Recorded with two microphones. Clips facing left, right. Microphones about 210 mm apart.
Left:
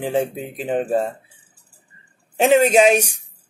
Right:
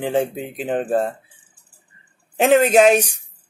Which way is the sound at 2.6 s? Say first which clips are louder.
Right 1 dB; 10° left (ahead or behind).